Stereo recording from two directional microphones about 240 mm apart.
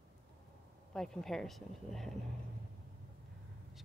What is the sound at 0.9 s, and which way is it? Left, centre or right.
Speech, centre.